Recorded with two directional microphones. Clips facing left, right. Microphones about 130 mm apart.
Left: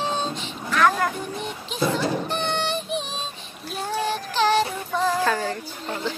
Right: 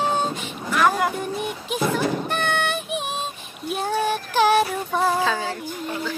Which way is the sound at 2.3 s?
60° right (ahead or behind).